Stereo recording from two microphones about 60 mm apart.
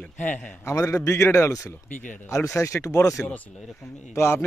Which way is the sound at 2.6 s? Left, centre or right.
Left.